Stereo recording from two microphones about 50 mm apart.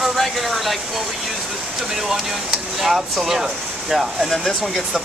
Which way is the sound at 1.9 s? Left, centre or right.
Centre.